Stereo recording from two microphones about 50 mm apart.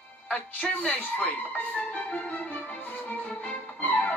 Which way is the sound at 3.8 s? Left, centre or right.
Left.